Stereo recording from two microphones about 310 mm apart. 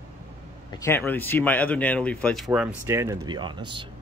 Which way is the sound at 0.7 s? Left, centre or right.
Centre.